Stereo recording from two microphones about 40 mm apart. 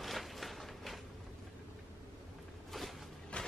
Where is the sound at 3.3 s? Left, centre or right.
Left.